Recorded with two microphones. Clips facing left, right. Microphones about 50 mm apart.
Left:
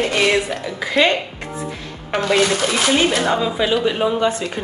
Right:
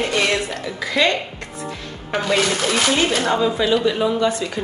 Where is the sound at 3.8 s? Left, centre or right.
Left.